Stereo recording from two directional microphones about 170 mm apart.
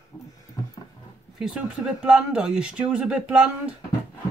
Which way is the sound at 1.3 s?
5° right (ahead or behind).